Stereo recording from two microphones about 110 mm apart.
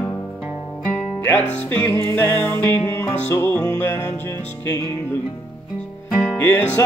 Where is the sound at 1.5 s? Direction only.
20° left (ahead or behind).